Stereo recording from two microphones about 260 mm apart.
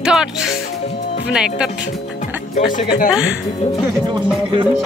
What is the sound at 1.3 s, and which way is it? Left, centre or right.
Speech, centre.